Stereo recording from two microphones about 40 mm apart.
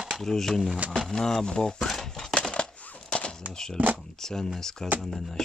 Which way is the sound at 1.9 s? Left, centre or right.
Centre.